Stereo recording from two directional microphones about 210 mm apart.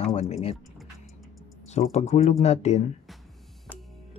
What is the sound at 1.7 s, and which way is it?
Speech, 30° left (ahead or behind).